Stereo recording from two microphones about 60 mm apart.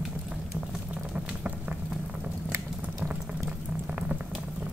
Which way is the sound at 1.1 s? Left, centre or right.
Centre.